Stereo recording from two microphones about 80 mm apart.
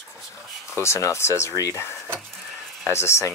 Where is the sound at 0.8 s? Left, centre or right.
Left.